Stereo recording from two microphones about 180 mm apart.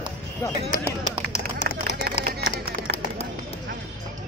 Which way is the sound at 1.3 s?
40° left (ahead or behind).